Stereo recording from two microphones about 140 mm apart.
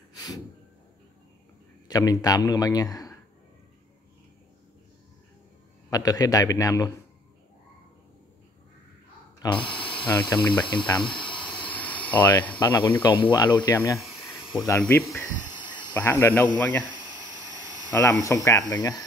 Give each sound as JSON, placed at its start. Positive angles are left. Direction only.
{"t": 0.1, "sound": "gasp", "side_deg": 25}
{"t": 1.9, "sound": "speech", "side_deg": 25}
{"t": 5.9, "sound": "speech", "side_deg": 25}
{"t": 9.4, "sound": "a sound", "side_deg": 35}
{"t": 10.7, "sound": "speech", "side_deg": 35}
{"t": 11.5, "sound": "cricket", "side_deg": 10}
{"t": 12.8, "sound": "speech", "side_deg": 35}
{"t": 13.9, "sound": "snake", "side_deg": -5}
{"t": 14.8, "sound": "speech", "side_deg": 15}
{"t": 17.1, "sound": "a sound", "side_deg": 30}
{"t": 18.2, "sound": "speech", "side_deg": 25}